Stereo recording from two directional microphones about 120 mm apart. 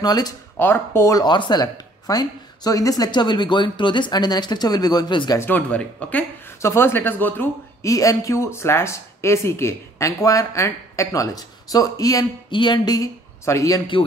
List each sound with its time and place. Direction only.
0.0 s speech: 35° left (ahead or behind)
0.6 s speech: 20° left (ahead or behind)
1.2 s speech: 35° left (ahead or behind)
5.4 s speech: 15° left (ahead or behind)
7.9 s speech: 30° left (ahead or behind)